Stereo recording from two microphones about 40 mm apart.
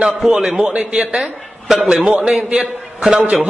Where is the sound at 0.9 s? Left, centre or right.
Centre.